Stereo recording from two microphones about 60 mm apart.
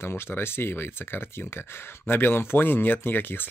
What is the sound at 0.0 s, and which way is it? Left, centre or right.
Speech, left.